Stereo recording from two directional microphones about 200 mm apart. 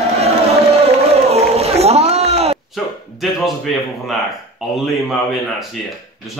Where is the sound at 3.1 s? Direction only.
Centre (ahead or behind).